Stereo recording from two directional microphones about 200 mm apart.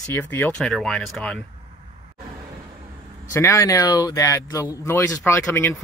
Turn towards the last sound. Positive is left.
turn(degrees=10)  # may be behind; listen again after turning